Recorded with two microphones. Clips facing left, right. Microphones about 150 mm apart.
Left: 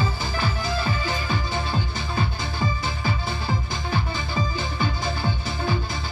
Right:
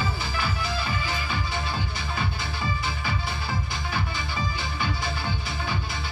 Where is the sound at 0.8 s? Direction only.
35° left (ahead or behind).